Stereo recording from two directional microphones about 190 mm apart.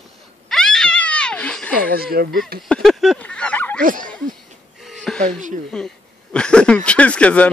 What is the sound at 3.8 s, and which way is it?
Speech, 45° right (ahead or behind).